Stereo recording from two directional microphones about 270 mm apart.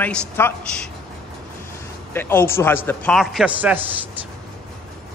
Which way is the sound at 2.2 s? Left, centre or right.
Centre.